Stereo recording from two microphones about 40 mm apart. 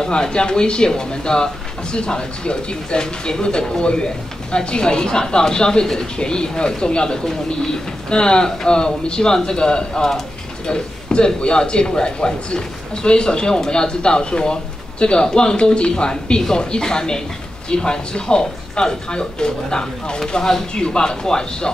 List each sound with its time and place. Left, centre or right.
0.1 s a man's voice: left